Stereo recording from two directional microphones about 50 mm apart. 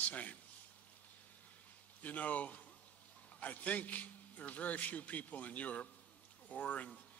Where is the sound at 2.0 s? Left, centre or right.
Left.